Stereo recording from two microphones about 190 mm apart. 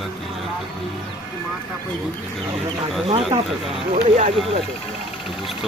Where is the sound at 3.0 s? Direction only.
30° right (ahead or behind).